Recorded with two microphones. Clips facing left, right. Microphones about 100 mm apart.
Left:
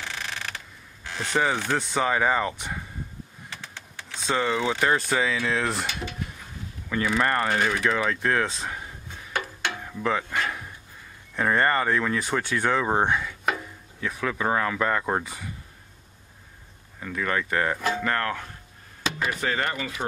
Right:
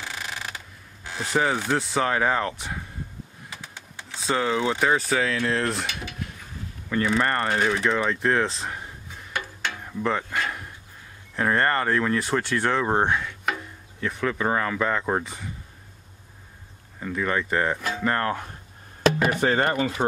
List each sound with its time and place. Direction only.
0.0 s mechanisms: 10° right (ahead or behind)
1.2 s speech: centre (ahead or behind)
3.4 s computer keyboard: 15° right (ahead or behind)
4.1 s speech: 5° right (ahead or behind)
9.8 s a sound: centre (ahead or behind)
11.3 s speech: centre (ahead or behind)
17.0 s speech: 10° right (ahead or behind)
18.1 s speech: 20° right (ahead or behind)
19.1 s a sound: 60° right (ahead or behind)
19.4 s speech: 35° right (ahead or behind)